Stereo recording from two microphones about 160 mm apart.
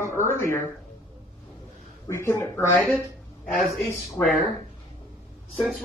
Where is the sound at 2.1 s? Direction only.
15° left (ahead or behind).